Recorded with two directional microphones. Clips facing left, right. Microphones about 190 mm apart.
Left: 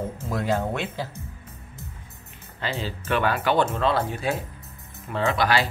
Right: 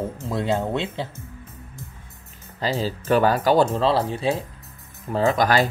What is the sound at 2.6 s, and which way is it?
Speech, 40° right (ahead or behind).